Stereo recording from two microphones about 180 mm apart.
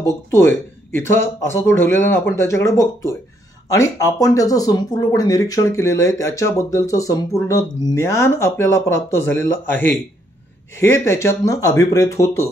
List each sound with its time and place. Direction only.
0.3 s speech: 10° left (ahead or behind)